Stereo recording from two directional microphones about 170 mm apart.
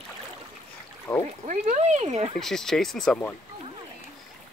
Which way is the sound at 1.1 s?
10° left (ahead or behind).